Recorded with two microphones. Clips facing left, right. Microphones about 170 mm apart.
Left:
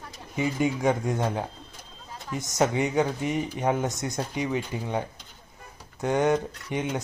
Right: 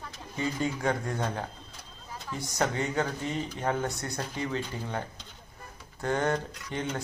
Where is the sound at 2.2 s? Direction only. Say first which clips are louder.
Left 5 dB; 20° left (ahead or behind).